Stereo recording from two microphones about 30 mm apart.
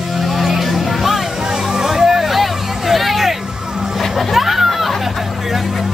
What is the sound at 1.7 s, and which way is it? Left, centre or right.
Music, centre.